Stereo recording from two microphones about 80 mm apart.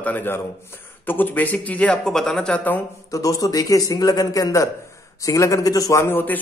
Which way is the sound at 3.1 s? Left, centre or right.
Left.